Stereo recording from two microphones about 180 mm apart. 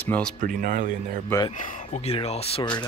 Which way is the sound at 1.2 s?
20° left (ahead or behind).